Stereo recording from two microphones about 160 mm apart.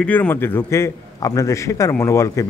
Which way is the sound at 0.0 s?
10° left (ahead or behind).